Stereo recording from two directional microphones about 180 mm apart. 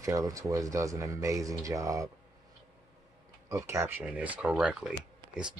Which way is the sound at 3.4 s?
15° right (ahead or behind).